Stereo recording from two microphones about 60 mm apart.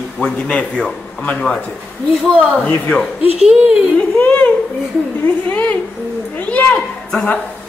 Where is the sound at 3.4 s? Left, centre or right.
Centre.